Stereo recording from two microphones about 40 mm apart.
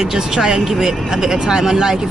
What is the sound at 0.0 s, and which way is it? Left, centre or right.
Speech, centre.